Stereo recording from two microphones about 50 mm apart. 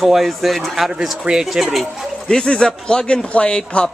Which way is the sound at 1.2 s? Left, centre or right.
Centre.